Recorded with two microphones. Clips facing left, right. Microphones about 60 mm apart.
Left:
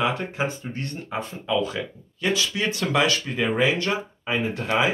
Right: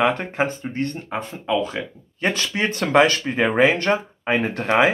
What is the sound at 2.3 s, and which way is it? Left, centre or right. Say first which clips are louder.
Speech: right 1 dB; right.